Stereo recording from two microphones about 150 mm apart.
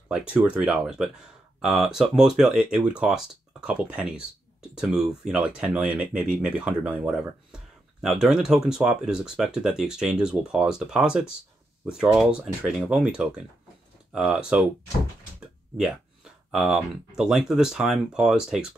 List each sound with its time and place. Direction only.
0.1 s speech: 5° right (ahead or behind)
16.5 s speech: 5° right (ahead or behind)